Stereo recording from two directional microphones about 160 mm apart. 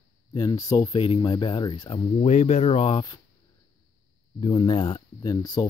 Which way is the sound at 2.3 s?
45° left (ahead or behind).